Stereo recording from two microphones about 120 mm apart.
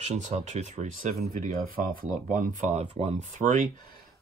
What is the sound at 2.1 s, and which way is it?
Speech, 80° right.